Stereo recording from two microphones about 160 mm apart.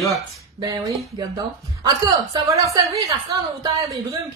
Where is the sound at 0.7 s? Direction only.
25° right (ahead or behind).